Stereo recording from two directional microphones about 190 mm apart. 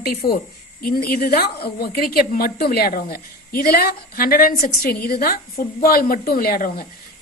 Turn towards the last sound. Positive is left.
turn(degrees=50)  # may be behind; listen again after turning